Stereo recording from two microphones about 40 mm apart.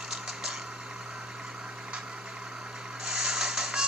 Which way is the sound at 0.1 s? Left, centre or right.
Centre.